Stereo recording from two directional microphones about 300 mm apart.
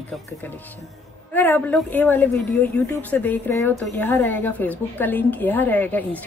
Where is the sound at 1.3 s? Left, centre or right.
Centre.